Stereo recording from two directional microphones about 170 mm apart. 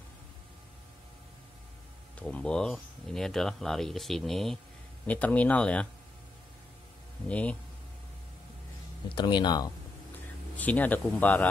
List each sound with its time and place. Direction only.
2.2 s speech: 5° left (ahead or behind)
7.2 s speech: 10° left (ahead or behind)
9.1 s speech: 25° left (ahead or behind)
10.5 s speech: 10° left (ahead or behind)